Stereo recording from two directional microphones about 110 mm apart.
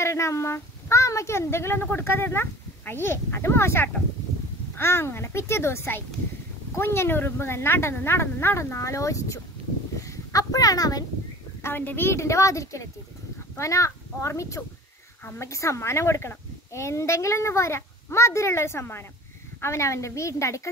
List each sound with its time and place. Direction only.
0.0 s speech: 25° left (ahead or behind)
11.6 s speech: 20° left (ahead or behind)